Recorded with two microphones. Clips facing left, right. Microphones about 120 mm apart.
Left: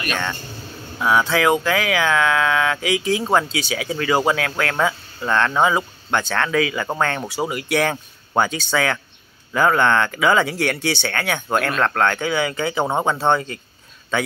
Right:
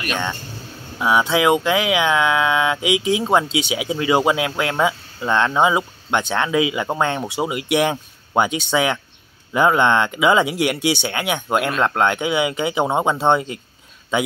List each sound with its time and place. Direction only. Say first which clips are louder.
0.0 s speech: right 1 dB; 20° right (ahead or behind)